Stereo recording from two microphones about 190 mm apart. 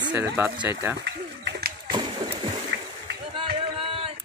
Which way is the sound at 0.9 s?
60° right (ahead or behind).